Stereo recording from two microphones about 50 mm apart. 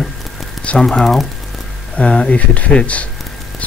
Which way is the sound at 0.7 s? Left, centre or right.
Centre.